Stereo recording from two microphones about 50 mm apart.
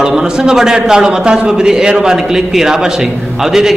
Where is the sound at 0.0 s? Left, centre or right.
Centre.